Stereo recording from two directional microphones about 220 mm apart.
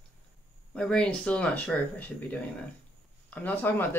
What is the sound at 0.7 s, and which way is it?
Speech, 5° left (ahead or behind).